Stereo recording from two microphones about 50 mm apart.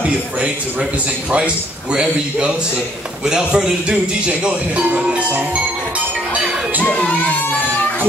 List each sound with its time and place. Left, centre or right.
1.3 s speech: right